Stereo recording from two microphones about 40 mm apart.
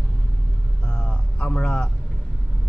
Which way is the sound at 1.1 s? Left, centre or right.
Left.